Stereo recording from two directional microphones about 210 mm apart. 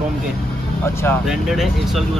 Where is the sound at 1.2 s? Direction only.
Centre (ahead or behind).